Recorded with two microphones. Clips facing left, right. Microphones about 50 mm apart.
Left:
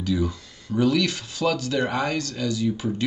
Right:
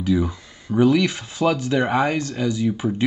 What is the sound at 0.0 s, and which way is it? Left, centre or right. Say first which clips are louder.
Speech: right 4 dB; centre.